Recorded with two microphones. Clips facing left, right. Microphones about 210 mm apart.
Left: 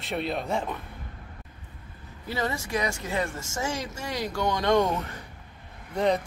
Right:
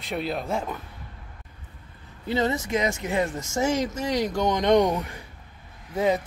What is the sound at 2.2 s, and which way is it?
Speech, 20° right (ahead or behind).